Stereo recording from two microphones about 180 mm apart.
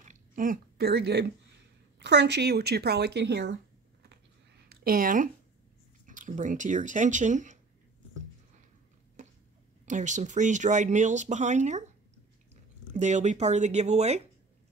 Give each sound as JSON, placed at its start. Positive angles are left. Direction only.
{"t": 0.0, "sound": "a sound", "side_deg": -45}
{"t": 2.0, "sound": "speech", "side_deg": -70}
{"t": 4.6, "sound": "speech", "side_deg": -55}
{"t": 9.8, "sound": "speech", "side_deg": -45}
{"t": 12.9, "sound": "speech", "side_deg": -40}